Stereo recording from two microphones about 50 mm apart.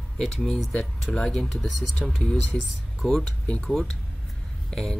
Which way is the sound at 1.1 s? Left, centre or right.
Centre.